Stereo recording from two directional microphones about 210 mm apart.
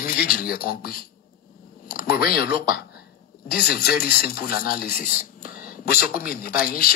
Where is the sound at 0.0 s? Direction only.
45° left (ahead or behind).